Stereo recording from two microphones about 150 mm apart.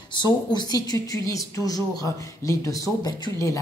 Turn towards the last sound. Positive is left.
turn(degrees=20)  # may be behind; listen again after turning